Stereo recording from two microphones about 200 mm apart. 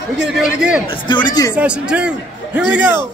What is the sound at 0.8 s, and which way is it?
Speech, 25° left (ahead or behind).